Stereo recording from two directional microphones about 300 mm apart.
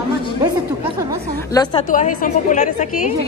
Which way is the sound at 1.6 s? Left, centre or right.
Centre.